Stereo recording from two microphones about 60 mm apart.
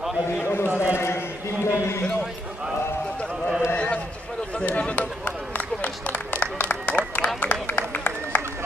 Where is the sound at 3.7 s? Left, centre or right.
Centre.